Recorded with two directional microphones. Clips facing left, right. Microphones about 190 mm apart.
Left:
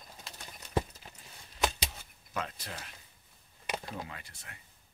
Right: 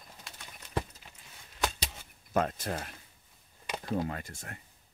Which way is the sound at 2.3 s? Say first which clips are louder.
Right 9 dB; 50° right (ahead or behind).